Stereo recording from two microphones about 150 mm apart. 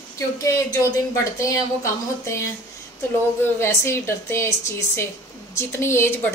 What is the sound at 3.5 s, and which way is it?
A woman's voice, 15° left (ahead or behind).